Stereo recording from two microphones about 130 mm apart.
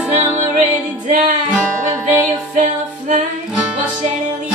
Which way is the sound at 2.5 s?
75° right (ahead or behind).